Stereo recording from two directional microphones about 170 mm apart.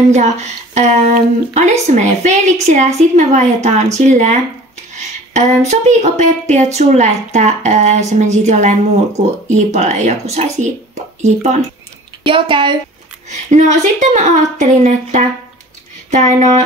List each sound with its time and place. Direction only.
0.1 s speech: 45° right (ahead or behind)
12.3 s a woman's voice: 30° right (ahead or behind)
13.3 s speech: 45° right (ahead or behind)